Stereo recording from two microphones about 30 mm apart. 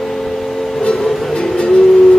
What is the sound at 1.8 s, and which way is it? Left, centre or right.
Vehicle, centre.